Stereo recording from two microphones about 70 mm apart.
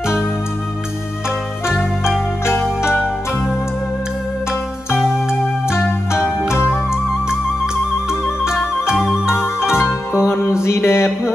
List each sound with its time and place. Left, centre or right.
2.4 s music: left
5.8 s music: left
8.1 s music: centre
9.3 s music: left
10.6 s mantra: left